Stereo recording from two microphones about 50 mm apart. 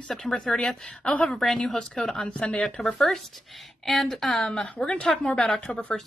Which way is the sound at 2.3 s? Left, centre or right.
Left.